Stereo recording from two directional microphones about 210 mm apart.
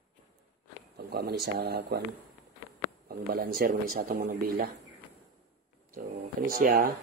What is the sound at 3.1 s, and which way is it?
Speech, 45° right (ahead or behind).